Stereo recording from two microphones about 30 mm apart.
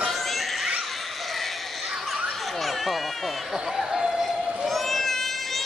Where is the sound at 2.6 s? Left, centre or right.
Centre.